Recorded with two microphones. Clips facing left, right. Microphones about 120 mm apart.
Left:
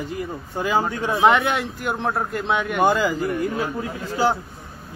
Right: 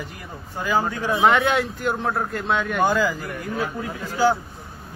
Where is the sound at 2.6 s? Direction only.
20° left (ahead or behind).